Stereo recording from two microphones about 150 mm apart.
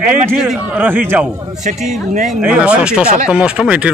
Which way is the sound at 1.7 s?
60° right (ahead or behind).